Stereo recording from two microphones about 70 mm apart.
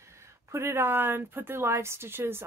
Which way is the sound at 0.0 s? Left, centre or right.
Right.